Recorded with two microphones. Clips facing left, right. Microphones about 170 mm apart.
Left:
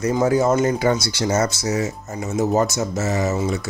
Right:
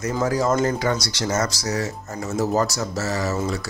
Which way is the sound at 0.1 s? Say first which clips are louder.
Left 4 dB; 25° left (ahead or behind).